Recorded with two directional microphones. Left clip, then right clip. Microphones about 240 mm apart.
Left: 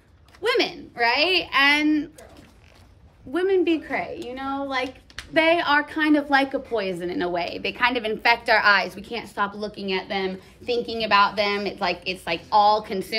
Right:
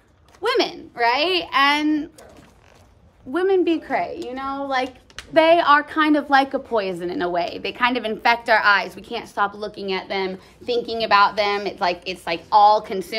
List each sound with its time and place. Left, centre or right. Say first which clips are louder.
0.4 s a woman's voice: right 2 dB; centre
3.3 s a woman's voice: right 2 dB; centre